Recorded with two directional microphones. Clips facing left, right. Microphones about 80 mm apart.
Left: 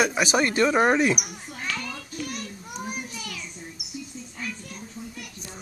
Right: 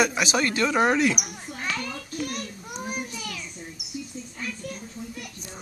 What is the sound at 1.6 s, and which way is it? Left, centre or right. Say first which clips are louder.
Children playing: right 1 dB; centre.